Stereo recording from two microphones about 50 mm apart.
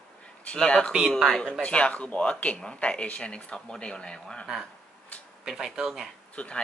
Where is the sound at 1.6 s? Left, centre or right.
Left.